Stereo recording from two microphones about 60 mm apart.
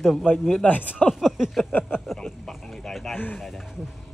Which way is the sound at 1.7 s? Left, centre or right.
Left.